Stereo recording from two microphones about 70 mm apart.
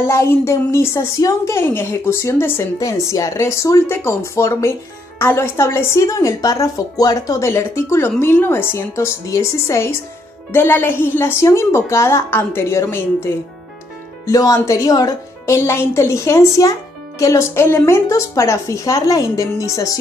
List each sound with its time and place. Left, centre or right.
0.0 s a woman's voice: left
2.8 s speech: left
7.4 s a woman's voice: left
8.7 s a woman's voice: left
14.2 s speech: left